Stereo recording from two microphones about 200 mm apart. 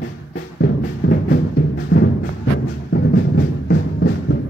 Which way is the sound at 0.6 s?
55° left (ahead or behind).